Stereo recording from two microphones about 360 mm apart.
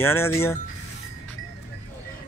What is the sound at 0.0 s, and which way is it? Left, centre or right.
Speech, centre.